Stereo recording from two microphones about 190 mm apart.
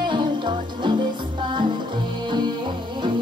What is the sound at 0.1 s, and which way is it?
Music, 25° right (ahead or behind).